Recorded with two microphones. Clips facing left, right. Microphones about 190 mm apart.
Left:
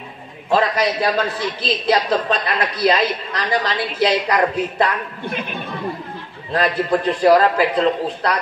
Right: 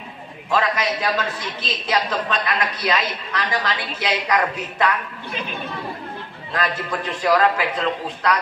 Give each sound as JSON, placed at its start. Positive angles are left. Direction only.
{"t": 0.5, "sound": "a man's voice", "side_deg": 35}
{"t": 6.5, "sound": "a man's voice", "side_deg": 35}